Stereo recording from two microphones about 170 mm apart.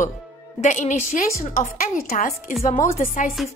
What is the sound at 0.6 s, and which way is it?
A woman's voice, 45° left (ahead or behind).